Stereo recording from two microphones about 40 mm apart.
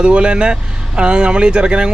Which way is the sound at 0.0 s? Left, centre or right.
Right.